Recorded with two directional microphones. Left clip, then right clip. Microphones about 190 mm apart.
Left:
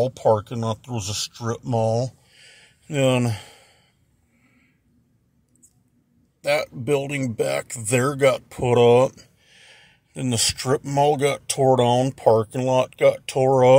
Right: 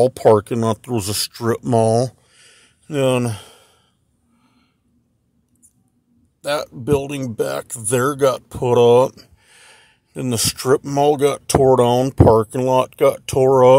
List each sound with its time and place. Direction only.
0.0 s speech: 55° right (ahead or behind)
2.2 s a sound: 20° right (ahead or behind)
6.4 s speech: 15° right (ahead or behind)
9.1 s speech: 30° right (ahead or behind)